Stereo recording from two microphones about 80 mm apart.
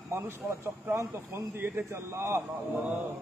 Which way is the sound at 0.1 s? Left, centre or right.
Right.